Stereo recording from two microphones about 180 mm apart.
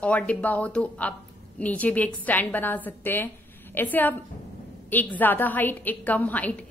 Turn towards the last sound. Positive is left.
turn(degrees=10)  # may be behind; listen again after turning